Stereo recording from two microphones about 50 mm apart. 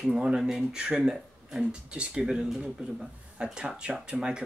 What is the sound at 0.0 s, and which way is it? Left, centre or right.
Speech, centre.